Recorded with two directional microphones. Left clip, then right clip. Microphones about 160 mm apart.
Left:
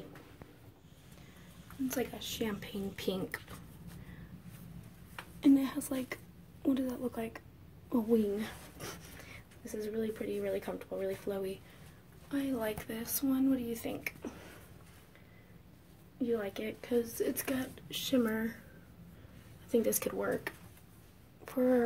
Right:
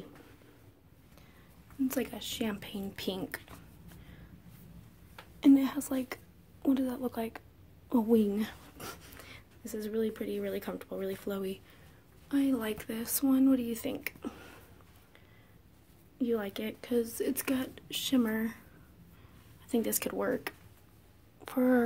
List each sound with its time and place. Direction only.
1.9 s speech: 35° right (ahead or behind)
5.4 s a woman's voice: 25° right (ahead or behind)
16.2 s speech: 35° right (ahead or behind)
19.7 s a woman's voice: 40° right (ahead or behind)